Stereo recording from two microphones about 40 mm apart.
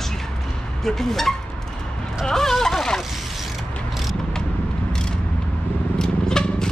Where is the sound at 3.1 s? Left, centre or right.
Centre.